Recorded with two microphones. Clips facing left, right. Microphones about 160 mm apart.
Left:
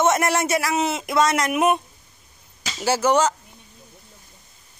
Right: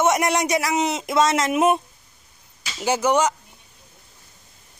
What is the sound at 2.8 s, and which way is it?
Speech, 15° right (ahead or behind).